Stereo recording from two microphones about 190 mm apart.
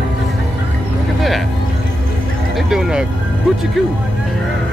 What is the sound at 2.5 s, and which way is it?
Speech, 5° right (ahead or behind).